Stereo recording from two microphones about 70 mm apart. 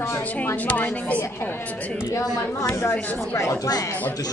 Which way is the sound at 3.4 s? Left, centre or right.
Left.